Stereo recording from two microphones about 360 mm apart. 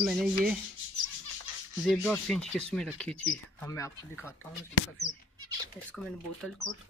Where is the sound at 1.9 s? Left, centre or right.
Centre.